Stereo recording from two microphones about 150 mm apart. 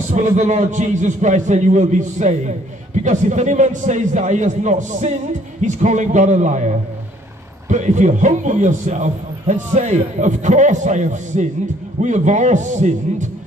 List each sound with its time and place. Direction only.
0.1 s a man's voice: 50° right (ahead or behind)
7.7 s a man's voice: 55° right (ahead or behind)